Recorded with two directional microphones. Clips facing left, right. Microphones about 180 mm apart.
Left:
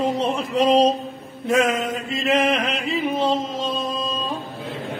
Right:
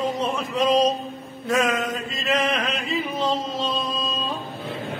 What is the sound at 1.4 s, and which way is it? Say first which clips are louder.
Mantra: left 3 dB; 30° left (ahead or behind).